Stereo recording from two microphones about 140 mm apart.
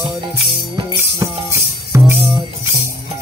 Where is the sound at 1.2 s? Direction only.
20° right (ahead or behind).